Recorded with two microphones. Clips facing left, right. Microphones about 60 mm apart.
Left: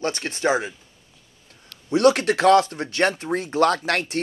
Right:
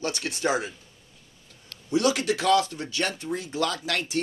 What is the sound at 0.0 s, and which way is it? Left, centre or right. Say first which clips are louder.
Speech: left 4 dB; left.